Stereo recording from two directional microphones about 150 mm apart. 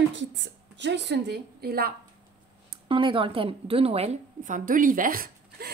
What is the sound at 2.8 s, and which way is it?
A woman's voice, 35° right (ahead or behind).